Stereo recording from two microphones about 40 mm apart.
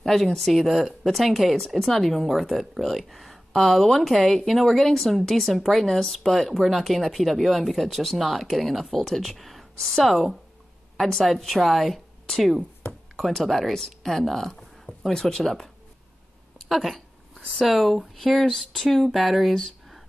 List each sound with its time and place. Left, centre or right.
0.0 s a woman's voice: centre